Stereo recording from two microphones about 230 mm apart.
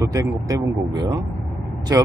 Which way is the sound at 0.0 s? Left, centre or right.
Centre.